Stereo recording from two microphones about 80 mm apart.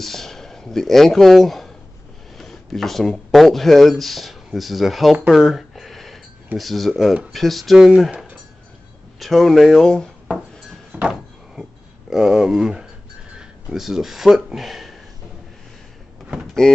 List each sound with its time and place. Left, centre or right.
0.0 s speech: centre
5.3 s a sound: centre
7.3 s speech: centre
9.2 s speech: centre
10.9 s a sound: centre
12.1 s speech: centre
16.6 s mechanisms: centre